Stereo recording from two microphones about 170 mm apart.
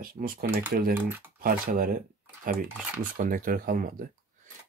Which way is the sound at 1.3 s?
55° right (ahead or behind).